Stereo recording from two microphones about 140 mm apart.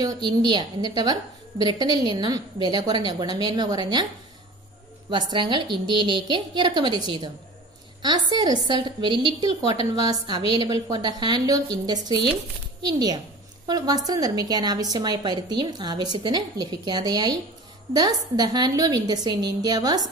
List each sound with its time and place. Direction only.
0.0 s a woman's voice: 30° right (ahead or behind)
5.1 s a woman's voice: 30° right (ahead or behind)